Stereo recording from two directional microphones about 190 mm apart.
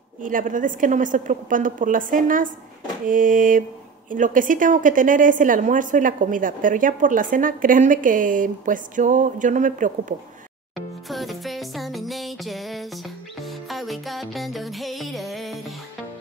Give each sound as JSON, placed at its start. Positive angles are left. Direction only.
{"t": 0.2, "sound": "a woman's voice", "side_deg": -45}
{"t": 11.1, "sound": "music", "side_deg": 0}